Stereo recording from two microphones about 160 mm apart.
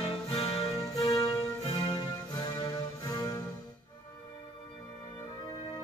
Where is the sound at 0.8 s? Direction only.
20° left (ahead or behind).